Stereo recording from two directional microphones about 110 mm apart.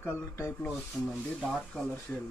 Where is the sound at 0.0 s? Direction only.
20° left (ahead or behind).